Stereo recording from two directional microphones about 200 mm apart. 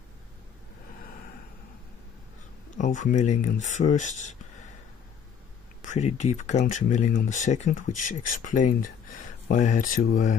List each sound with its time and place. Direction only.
2.8 s speech: 40° left (ahead or behind)
5.8 s speech: 35° left (ahead or behind)